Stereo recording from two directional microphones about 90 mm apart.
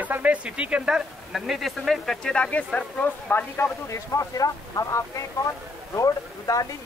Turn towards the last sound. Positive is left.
turn(degrees=40)  # may be behind; listen again after turning